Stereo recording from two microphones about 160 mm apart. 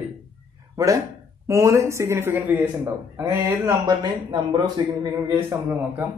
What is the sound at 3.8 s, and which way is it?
Speech, 25° right (ahead or behind).